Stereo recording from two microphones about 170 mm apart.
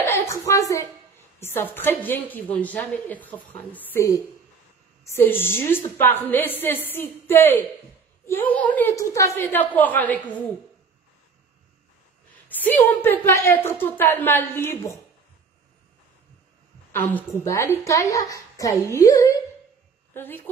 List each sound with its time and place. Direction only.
0.0 s a woman's voice: 15° left (ahead or behind)
12.4 s a woman's voice: 10° left (ahead or behind)
16.9 s a woman's voice: 10° left (ahead or behind)